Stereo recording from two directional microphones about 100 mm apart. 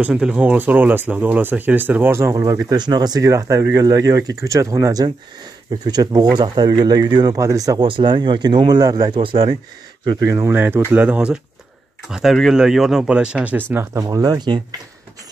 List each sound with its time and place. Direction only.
0.0 s speech: 10° right (ahead or behind); by 2.6 s 30° right (ahead or behind)
2.7 s speech: 45° right (ahead or behind)
5.7 s speech: 45° right (ahead or behind)
7.8 s speech: 55° right (ahead or behind)
9.2 s speech: 50° right (ahead or behind)
10.2 s speech: 30° right (ahead or behind)
10.6 s speech: 20° right (ahead or behind)
13.9 s speech: 35° right (ahead or behind)